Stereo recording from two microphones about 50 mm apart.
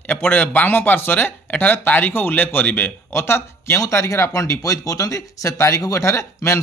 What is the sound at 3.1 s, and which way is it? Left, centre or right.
Speech, left.